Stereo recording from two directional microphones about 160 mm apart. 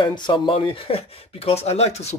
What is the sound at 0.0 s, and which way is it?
Speech, 30° left (ahead or behind).